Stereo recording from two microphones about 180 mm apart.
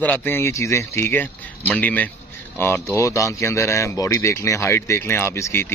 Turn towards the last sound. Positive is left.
turn(degrees=15)  # may be behind; listen again after turning